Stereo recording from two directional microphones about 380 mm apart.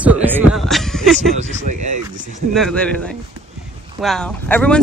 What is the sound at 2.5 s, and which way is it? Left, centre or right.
Speech, centre.